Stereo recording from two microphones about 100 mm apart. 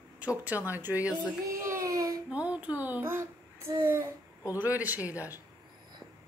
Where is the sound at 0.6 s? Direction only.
20° right (ahead or behind).